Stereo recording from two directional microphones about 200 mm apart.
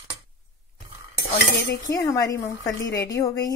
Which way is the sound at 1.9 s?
15° left (ahead or behind).